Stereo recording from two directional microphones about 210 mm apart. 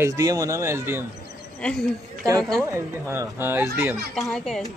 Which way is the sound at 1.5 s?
5° left (ahead or behind).